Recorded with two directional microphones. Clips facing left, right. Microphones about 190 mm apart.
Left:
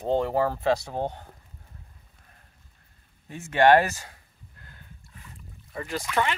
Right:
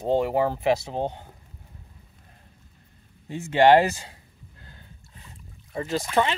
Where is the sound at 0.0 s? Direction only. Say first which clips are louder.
Right 2 dB; 15° right (ahead or behind).